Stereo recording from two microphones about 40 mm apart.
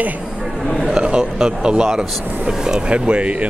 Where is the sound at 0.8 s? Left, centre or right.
Right.